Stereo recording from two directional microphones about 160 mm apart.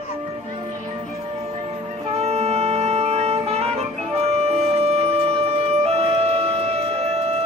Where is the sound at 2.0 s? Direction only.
40° right (ahead or behind).